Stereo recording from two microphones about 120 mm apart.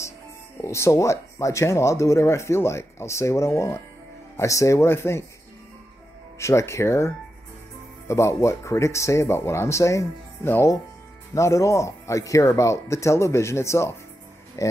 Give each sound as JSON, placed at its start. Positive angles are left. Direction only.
{"t": 0.6, "sound": "speech", "side_deg": 25}
{"t": 6.3, "sound": "speech", "side_deg": 25}
{"t": 8.1, "sound": "speech", "side_deg": 25}